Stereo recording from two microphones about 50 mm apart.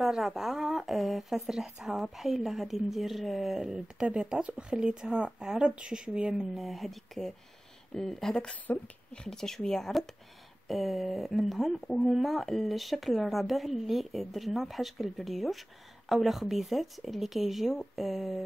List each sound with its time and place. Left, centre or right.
0.0 s a woman's voice: centre
8.7 s speech: left
9.1 s speech: centre